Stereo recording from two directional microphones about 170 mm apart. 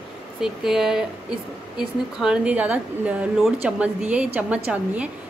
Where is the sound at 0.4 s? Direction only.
5° right (ahead or behind).